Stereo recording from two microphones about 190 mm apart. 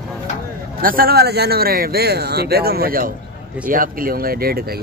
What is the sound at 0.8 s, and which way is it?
Speech, 50° right (ahead or behind).